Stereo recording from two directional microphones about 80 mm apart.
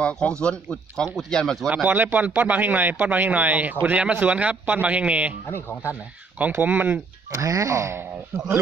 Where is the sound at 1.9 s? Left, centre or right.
Right.